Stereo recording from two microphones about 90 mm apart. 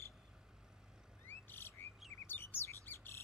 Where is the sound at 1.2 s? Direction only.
25° left (ahead or behind).